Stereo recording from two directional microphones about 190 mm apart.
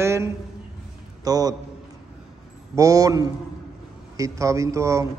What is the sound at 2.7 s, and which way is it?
Mantra, 20° right (ahead or behind).